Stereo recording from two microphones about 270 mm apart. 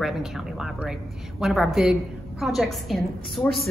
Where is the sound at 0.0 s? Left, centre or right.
Centre.